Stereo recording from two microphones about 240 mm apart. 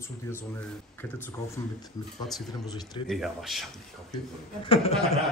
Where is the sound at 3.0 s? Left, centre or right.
Centre.